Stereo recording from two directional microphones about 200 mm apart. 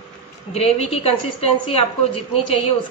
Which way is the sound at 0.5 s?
30° left (ahead or behind).